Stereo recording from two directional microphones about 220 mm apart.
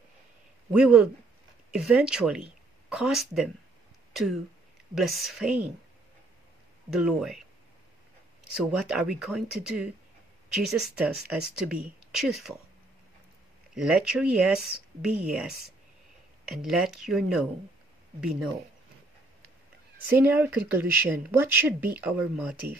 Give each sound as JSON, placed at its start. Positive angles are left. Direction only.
{"t": 0.7, "sound": "speech", "side_deg": -5}
{"t": 6.9, "sound": "speech", "side_deg": 0}
{"t": 8.5, "sound": "speech", "side_deg": -5}
{"t": 13.7, "sound": "speech", "side_deg": -5}
{"t": 16.5, "sound": "speech", "side_deg": 0}
{"t": 20.1, "sound": "speech", "side_deg": -10}